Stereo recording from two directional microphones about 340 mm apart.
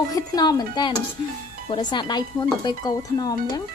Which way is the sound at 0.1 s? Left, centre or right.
Centre.